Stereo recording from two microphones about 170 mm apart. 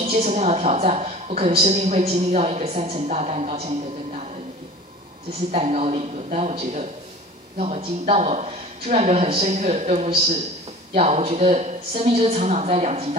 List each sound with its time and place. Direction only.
0.0 s a woman's voice: 40° right (ahead or behind)
5.5 s a woman's voice: 40° right (ahead or behind)